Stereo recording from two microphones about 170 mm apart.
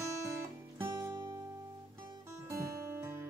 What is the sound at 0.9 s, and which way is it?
Music, 25° right (ahead or behind).